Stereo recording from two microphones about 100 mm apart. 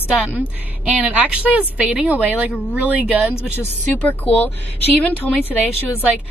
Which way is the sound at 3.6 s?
15° left (ahead or behind).